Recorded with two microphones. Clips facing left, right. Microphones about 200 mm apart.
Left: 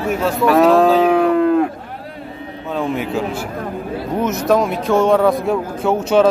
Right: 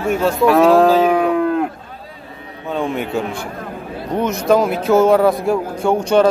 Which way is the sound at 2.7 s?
Centre (ahead or behind).